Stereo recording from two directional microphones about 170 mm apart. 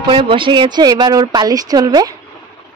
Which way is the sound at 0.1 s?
30° right (ahead or behind).